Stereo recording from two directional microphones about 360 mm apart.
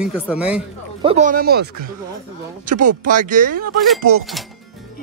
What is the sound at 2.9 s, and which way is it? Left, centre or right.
Speech, right.